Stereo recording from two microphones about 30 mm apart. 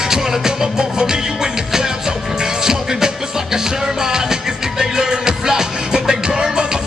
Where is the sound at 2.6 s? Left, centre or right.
Centre.